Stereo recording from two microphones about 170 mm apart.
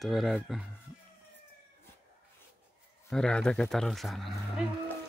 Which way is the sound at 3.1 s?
5° left (ahead or behind).